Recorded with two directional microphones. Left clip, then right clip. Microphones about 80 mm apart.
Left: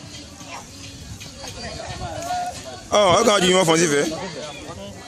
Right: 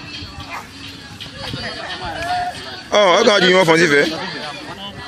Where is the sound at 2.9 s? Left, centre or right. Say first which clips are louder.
Right 4 dB; left.